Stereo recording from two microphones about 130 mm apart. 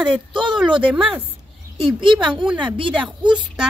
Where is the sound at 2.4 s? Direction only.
10° right (ahead or behind).